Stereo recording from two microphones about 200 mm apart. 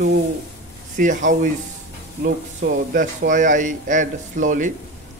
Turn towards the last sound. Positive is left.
turn(degrees=-40)  # may be behind; listen again after turning